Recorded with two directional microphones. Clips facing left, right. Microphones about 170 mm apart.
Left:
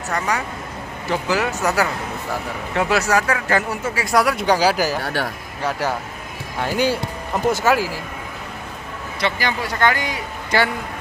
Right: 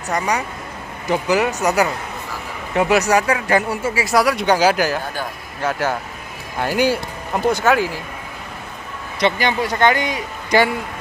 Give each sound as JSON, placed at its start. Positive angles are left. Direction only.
{"t": 1.0, "sound": "speech", "side_deg": -15}
{"t": 5.0, "sound": "a man's voice", "side_deg": 80}
{"t": 5.6, "sound": "speech", "side_deg": 0}
{"t": 9.2, "sound": "a man's voice", "side_deg": -20}